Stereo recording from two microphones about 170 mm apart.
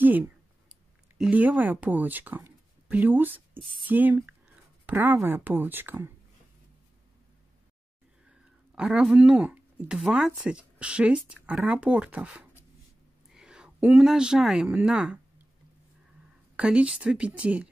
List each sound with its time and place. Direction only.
0.0 s a sound: 10° right (ahead or behind)
3.8 s speech: 10° right (ahead or behind)
8.3 s speech: 5° right (ahead or behind)
16.5 s speech: 5° right (ahead or behind)